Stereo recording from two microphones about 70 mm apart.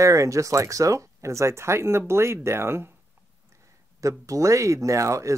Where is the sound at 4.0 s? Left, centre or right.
Right.